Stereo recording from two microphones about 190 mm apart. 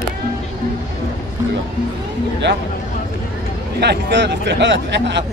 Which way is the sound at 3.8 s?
65° right (ahead or behind).